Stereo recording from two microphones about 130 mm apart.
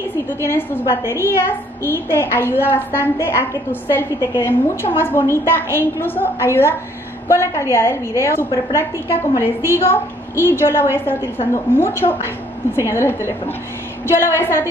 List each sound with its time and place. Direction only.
0.3 s a woman's voice: 20° left (ahead or behind)